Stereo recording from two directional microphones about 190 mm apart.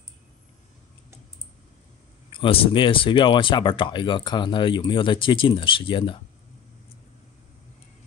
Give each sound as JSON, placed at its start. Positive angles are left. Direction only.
{"t": 2.3, "sound": "speech", "side_deg": 30}